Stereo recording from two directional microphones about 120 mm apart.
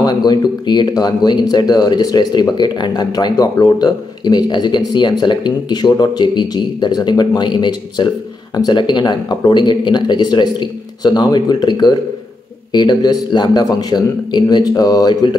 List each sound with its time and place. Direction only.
0.0 s speech: 35° left (ahead or behind)